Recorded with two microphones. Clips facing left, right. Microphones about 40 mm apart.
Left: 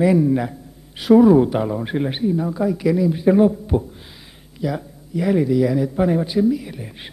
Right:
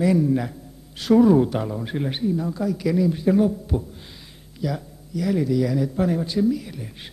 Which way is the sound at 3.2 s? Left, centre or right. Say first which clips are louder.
Left 5 dB; left.